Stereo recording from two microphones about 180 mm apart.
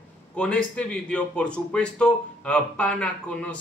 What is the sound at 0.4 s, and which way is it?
A man's voice, 5° left (ahead or behind).